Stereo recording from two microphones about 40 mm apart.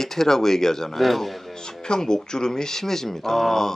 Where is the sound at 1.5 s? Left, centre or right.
Centre.